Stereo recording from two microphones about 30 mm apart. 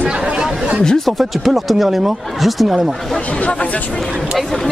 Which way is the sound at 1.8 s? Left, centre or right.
Centre.